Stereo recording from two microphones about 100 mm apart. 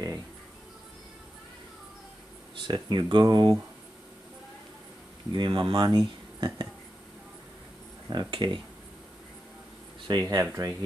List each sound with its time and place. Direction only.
2.6 s speech: 45° right (ahead or behind)
5.3 s speech: 55° right (ahead or behind)
8.1 s speech: 50° right (ahead or behind)
10.0 s speech: 40° right (ahead or behind)
10.4 s speech: 30° right (ahead or behind)